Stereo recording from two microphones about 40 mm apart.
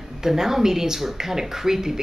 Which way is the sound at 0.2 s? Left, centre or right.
Centre.